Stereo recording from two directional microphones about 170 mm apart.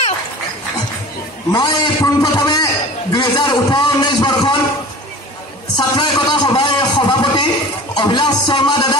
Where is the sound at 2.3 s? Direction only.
25° left (ahead or behind).